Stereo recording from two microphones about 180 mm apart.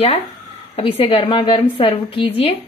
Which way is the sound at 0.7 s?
35° left (ahead or behind).